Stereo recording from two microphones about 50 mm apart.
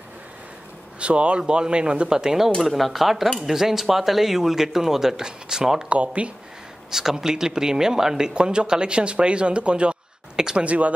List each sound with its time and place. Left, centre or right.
0.9 s speech: right
5.9 s speech: right
6.9 s speech: centre
10.6 s speech: right